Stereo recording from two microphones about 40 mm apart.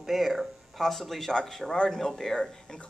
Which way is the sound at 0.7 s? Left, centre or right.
Centre.